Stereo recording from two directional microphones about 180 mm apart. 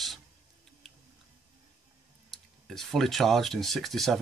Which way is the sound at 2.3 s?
Centre (ahead or behind).